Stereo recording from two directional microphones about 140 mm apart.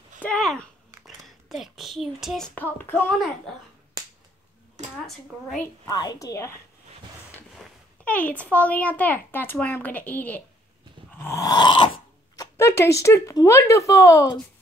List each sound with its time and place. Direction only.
0.2 s a sound: 5° left (ahead or behind)
1.0 s a child's voice: centre (ahead or behind)
5.0 s a woman's voice: centre (ahead or behind)
5.9 s speech: 25° left (ahead or behind)
8.0 s speech: 10° left (ahead or behind)
11.1 s dog: 20° left (ahead or behind)
12.5 s speech: 20° left (ahead or behind)